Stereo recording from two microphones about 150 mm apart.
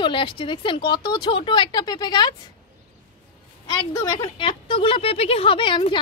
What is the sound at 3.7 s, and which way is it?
A woman's voice, 25° left (ahead or behind).